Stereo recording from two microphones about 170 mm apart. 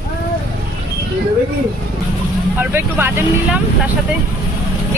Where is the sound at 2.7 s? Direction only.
15° right (ahead or behind).